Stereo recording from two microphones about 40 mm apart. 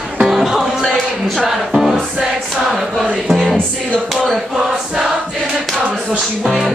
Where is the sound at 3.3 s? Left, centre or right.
Centre.